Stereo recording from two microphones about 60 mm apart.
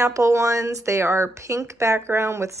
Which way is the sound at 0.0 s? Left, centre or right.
Right.